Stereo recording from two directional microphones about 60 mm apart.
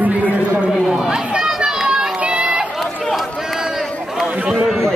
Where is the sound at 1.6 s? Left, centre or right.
Centre.